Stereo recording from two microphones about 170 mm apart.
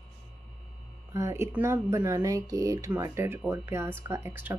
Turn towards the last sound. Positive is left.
turn(degrees=-15)  # may be behind; listen again after turning